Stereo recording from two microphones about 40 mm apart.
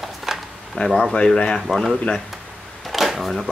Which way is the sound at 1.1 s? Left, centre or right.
Centre.